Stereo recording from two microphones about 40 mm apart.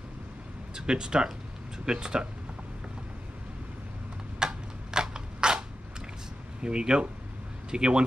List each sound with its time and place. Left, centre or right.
0.7 s speech: centre
4.4 s a sound: centre
6.6 s speech: centre